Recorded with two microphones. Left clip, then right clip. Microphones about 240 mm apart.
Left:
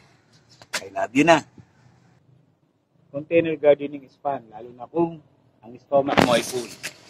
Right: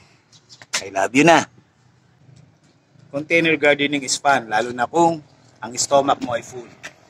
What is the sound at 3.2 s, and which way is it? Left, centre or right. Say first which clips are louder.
A man's voice: right 2 dB; centre.